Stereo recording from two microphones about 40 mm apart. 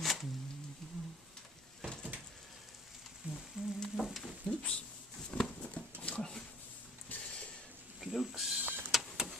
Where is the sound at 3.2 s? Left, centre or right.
Right.